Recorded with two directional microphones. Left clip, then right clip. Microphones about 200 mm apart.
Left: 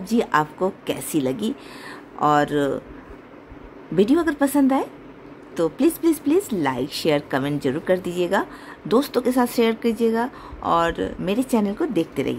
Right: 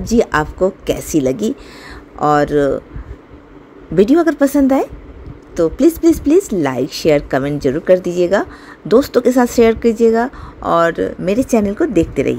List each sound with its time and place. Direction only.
0.0 s speech: 15° right (ahead or behind)
3.9 s a woman's voice: 15° right (ahead or behind)